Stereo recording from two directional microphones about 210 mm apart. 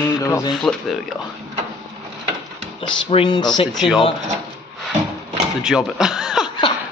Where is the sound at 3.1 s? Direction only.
20° left (ahead or behind).